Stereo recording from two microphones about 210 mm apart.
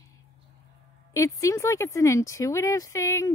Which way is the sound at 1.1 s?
15° left (ahead or behind).